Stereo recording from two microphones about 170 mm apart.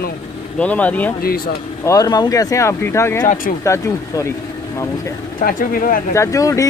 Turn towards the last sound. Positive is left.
turn(degrees=20)  # may be behind; listen again after turning